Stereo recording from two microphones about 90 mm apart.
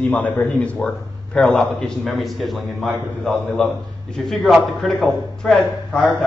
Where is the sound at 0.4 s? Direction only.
10° left (ahead or behind).